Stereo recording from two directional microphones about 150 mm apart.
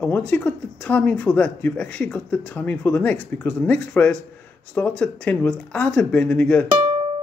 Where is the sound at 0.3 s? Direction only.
5° left (ahead or behind).